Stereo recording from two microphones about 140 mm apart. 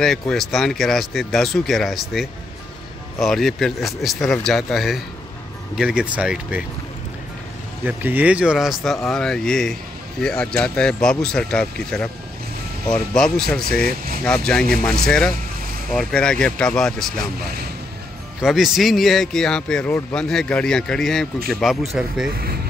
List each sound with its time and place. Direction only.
0.0 s speech: 5° left (ahead or behind)
7.8 s speech: 15° right (ahead or behind); by 13.7 s 5° left (ahead or behind)
13.8 s speech: 90° right
14.2 s speech: 5° left (ahead or behind)
18.4 s speech: centre (ahead or behind)